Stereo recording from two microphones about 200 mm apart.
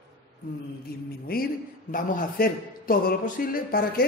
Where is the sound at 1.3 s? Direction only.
50° left (ahead or behind).